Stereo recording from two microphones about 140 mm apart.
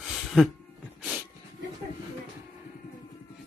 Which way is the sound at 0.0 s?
Centre (ahead or behind).